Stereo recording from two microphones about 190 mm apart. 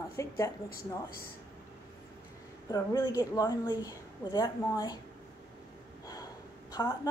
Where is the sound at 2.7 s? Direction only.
20° left (ahead or behind).